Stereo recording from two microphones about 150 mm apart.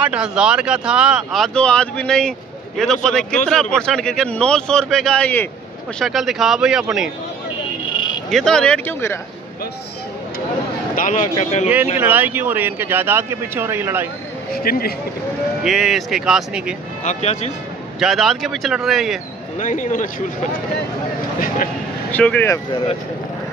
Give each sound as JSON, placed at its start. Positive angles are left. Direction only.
{"t": 0.0, "sound": "speech", "side_deg": -5}
{"t": 5.9, "sound": "speech", "side_deg": 0}
{"t": 8.3, "sound": "speech", "side_deg": 5}
{"t": 11.0, "sound": "speech", "side_deg": 55}
{"t": 12.0, "sound": "speech", "side_deg": -10}
{"t": 14.5, "sound": "speech", "side_deg": 85}
{"t": 15.6, "sound": "speech", "side_deg": 0}
{"t": 17.0, "sound": "speech", "side_deg": 50}
{"t": 17.9, "sound": "speech", "side_deg": 0}
{"t": 19.6, "sound": "speech", "side_deg": 60}
{"t": 22.1, "sound": "speech", "side_deg": 10}